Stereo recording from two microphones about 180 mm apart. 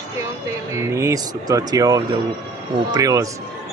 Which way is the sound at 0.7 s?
15° right (ahead or behind).